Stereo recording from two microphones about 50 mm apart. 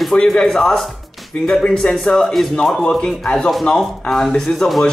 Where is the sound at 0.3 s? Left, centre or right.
Centre.